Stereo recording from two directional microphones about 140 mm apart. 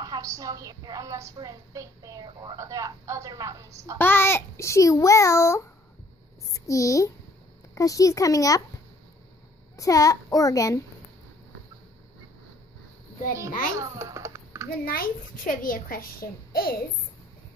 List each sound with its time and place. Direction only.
0.0 s a woman's voice: 25° right (ahead or behind)
4.0 s a child's voice: 15° left (ahead or behind)
9.8 s a child's voice: 25° left (ahead or behind)
13.5 s a child's voice: 75° left (ahead or behind)
13.7 s a sound: 20° right (ahead or behind)
14.9 s a child's voice: 90° left